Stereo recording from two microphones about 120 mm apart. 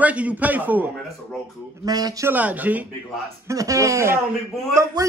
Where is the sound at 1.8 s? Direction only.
30° right (ahead or behind).